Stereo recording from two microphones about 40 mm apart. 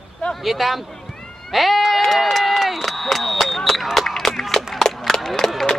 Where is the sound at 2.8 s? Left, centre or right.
Centre.